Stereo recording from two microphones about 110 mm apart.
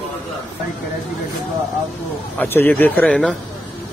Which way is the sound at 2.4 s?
20° left (ahead or behind).